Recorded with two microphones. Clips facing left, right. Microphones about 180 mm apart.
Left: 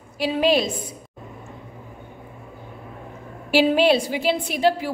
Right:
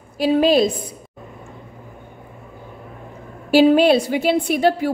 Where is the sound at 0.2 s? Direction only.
45° right (ahead or behind).